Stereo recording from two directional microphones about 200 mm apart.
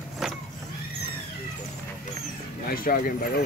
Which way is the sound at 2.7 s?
45° left (ahead or behind).